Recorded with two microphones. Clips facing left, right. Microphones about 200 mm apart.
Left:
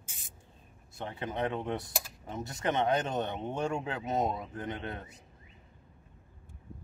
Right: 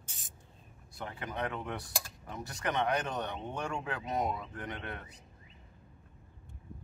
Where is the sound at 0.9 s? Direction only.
25° left (ahead or behind).